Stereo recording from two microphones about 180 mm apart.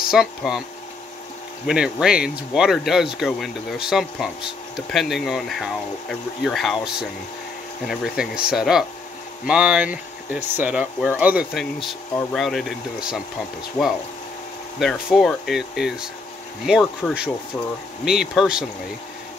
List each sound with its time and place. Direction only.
0.1 s speech: 5° right (ahead or behind)
1.7 s speech: 5° right (ahead or behind)
7.8 s speech: centre (ahead or behind)
14.8 s speech: centre (ahead or behind)